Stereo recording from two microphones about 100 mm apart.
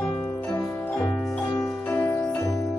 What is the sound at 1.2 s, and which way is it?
Music, 5° left (ahead or behind).